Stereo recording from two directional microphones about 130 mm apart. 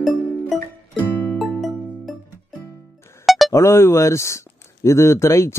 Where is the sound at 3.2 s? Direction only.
Centre (ahead or behind).